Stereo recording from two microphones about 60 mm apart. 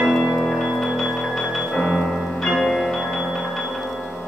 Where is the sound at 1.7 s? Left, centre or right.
Centre.